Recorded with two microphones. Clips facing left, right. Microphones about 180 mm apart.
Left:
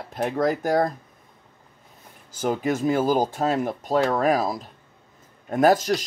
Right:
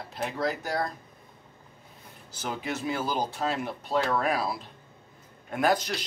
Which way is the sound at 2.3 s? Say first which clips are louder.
Left 9 dB; 45° left (ahead or behind).